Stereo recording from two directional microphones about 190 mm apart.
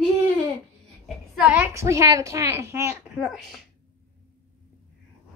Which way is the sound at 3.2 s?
Centre (ahead or behind).